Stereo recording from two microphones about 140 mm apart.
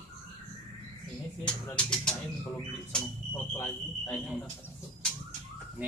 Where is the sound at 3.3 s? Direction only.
15° left (ahead or behind).